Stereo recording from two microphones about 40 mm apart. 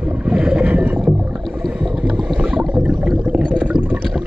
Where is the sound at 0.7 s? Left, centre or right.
Right.